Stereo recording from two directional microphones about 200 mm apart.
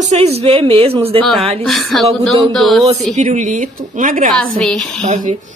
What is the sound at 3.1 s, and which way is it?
Speech, 35° right (ahead or behind).